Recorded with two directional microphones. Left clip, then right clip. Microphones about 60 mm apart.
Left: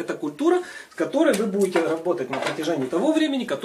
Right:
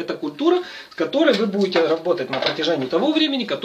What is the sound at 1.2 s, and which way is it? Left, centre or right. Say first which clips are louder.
Speech: right 3 dB; centre.